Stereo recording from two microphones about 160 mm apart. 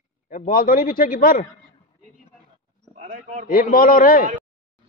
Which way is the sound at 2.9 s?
60° right (ahead or behind).